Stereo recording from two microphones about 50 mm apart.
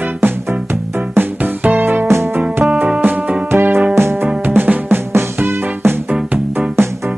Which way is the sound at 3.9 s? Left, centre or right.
Right.